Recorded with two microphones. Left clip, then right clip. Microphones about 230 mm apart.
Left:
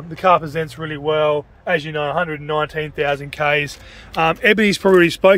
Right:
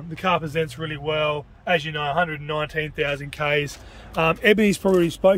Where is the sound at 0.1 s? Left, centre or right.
Centre.